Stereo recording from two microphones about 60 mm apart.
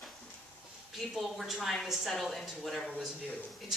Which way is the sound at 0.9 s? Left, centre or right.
Centre.